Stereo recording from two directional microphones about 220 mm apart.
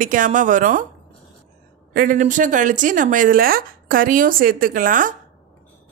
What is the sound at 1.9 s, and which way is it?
A woman's voice, 40° right (ahead or behind).